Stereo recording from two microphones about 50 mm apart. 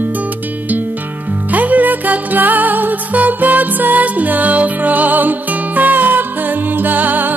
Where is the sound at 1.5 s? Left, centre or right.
Right.